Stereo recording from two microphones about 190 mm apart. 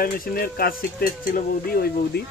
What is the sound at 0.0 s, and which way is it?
Speech, 50° left (ahead or behind).